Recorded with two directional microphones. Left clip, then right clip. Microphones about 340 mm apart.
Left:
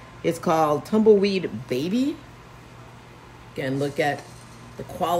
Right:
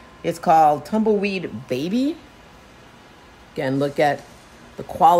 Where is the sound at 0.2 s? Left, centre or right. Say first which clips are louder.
Right 6 dB; centre.